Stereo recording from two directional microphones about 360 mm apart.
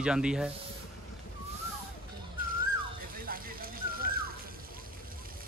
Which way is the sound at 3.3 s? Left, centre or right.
Right.